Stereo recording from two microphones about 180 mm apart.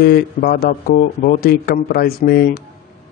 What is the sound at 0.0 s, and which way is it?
A man's voice, 55° left (ahead or behind).